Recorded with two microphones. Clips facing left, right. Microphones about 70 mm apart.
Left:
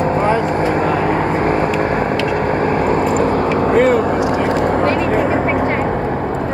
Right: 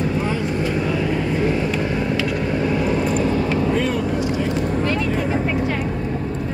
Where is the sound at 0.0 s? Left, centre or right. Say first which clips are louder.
Left 7 dB; left.